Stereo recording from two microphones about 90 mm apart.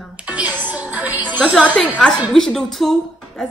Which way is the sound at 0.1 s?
15° right (ahead or behind).